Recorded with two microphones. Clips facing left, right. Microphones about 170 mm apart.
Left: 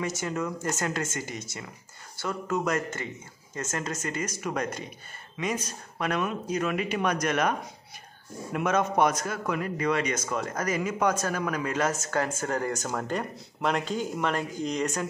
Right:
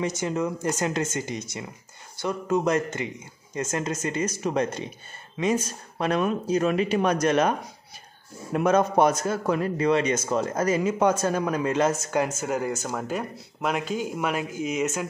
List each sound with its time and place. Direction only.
0.0 s a man's voice: 20° right (ahead or behind)
8.5 s a man's voice: 35° right (ahead or behind)
12.4 s speech: 10° right (ahead or behind)